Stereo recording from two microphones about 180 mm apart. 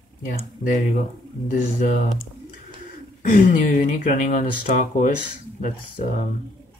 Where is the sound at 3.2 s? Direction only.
45° left (ahead or behind).